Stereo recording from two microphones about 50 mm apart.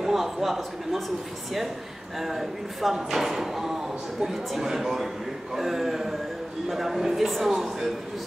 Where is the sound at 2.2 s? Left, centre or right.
Centre.